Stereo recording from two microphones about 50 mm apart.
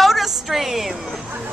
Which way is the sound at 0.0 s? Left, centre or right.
Centre.